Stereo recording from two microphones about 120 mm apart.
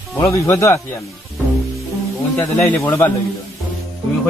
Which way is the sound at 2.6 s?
25° left (ahead or behind).